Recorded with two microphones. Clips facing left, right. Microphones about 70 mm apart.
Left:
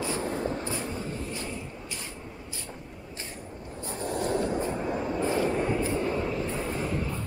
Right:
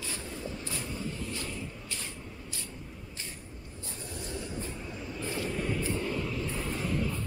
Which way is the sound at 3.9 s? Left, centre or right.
Left.